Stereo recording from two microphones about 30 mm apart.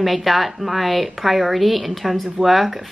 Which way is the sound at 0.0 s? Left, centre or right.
Centre.